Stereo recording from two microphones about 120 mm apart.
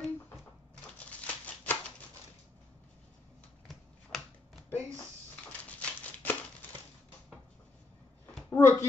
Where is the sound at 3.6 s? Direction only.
Centre (ahead or behind).